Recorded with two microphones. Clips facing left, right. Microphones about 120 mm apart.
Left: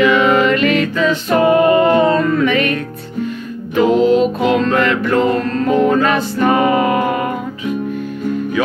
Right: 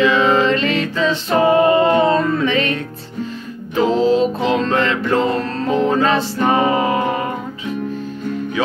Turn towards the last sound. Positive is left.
turn(degrees=-30)  # may be behind; listen again after turning